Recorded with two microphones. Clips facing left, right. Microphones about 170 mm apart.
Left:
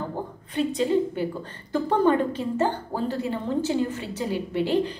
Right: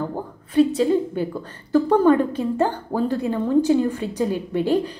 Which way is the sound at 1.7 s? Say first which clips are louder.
Right 5 dB; 10° right (ahead or behind).